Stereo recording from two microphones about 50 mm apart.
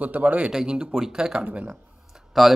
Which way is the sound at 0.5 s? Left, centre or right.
Centre.